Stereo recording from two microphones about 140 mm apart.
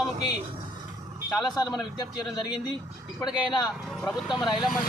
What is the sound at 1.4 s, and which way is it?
A man's voice, 30° left (ahead or behind).